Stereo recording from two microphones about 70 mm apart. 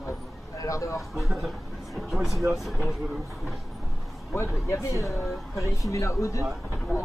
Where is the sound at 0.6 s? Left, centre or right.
Left.